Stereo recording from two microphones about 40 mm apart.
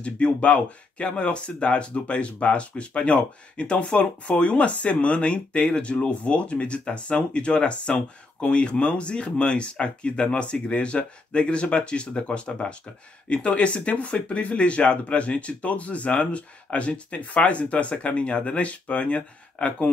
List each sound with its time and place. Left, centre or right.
0.0 s speech: left